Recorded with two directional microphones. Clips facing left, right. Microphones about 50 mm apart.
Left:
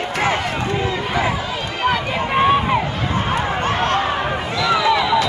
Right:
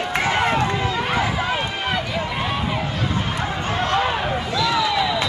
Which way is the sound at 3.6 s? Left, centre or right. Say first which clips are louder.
Left 1 dB; left.